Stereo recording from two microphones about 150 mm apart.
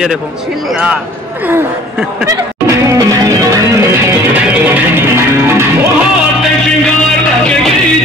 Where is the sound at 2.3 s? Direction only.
20° right (ahead or behind).